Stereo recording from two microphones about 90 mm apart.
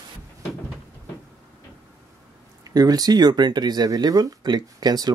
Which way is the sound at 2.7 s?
45° right (ahead or behind).